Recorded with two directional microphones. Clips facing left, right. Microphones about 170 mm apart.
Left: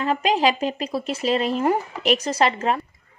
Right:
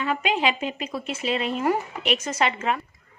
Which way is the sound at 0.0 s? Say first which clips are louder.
Left 4 dB; 35° left (ahead or behind).